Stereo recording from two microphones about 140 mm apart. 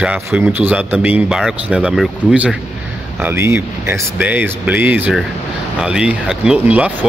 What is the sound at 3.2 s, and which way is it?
Speech, 20° right (ahead or behind).